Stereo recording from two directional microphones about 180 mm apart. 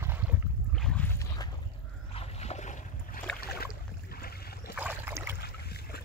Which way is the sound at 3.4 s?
60° left (ahead or behind).